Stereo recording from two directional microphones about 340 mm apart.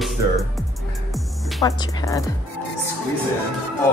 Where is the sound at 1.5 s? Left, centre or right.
Centre.